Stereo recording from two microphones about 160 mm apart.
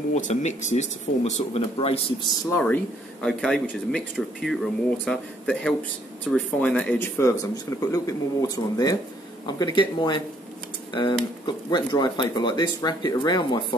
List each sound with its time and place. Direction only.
0.1 s speech: 45° left (ahead or behind)
2.5 s speech: 10° left (ahead or behind); by 13.7 s 30° left (ahead or behind)